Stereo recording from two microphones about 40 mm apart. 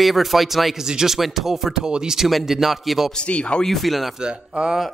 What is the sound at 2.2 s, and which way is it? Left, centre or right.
Speech, centre.